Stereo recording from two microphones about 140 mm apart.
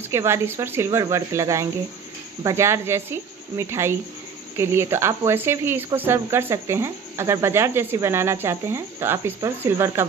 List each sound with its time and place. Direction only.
0.1 s speech: 20° right (ahead or behind)